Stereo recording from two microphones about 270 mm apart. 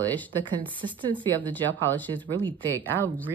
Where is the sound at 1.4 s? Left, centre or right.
Centre.